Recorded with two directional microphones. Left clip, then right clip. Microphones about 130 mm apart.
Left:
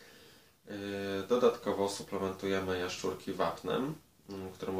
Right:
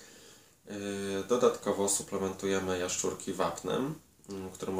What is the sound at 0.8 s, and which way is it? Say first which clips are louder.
Speech: right 1 dB; 25° right (ahead or behind).